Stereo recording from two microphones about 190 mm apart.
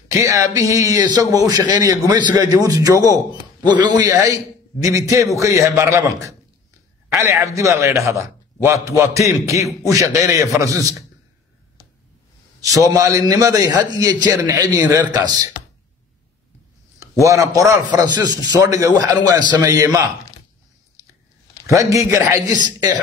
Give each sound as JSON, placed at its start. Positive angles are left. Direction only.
{"t": 0.1, "sound": "a man's voice", "side_deg": -15}
{"t": 12.6, "sound": "a man's voice", "side_deg": -15}
{"t": 17.2, "sound": "a man's voice", "side_deg": -15}
{"t": 21.6, "sound": "a man's voice", "side_deg": -15}